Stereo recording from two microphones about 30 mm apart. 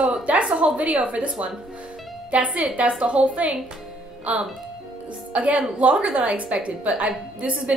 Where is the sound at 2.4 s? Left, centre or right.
Right.